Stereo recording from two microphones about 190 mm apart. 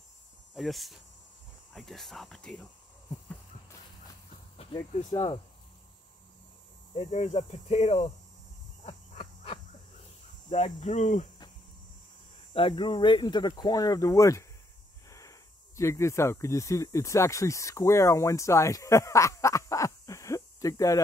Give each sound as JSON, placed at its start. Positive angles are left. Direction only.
{"t": 0.6, "sound": "speech", "side_deg": 0}
{"t": 4.6, "sound": "speech", "side_deg": 25}
{"t": 7.0, "sound": "speech", "side_deg": 35}
{"t": 8.8, "sound": "a sound", "side_deg": 30}
{"t": 10.5, "sound": "speech", "side_deg": 35}
{"t": 12.5, "sound": "speech", "side_deg": 25}